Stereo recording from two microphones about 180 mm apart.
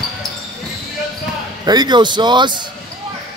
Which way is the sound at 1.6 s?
20° right (ahead or behind).